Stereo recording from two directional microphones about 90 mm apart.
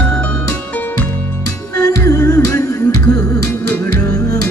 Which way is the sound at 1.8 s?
35° left (ahead or behind).